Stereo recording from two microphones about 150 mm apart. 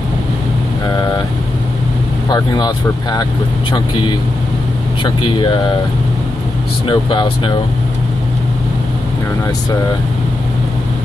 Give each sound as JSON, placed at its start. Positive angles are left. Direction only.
{"t": 0.8, "sound": "vehicle", "side_deg": 25}
{"t": 2.3, "sound": "speech", "side_deg": 25}
{"t": 6.9, "sound": "speech", "side_deg": 35}